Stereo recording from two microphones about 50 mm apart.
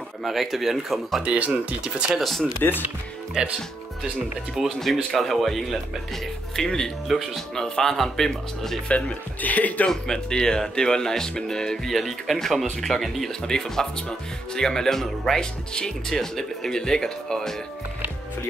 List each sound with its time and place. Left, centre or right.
0.2 s speech: centre
1.2 s speech: right
2.1 s speech: centre
3.4 s speech: centre
4.6 s speech: centre
5.1 s speech: centre
7.1 s speech: centre
7.5 s speech: centre
8.8 s speech: left
9.8 s speech: centre
11.9 s speech: centre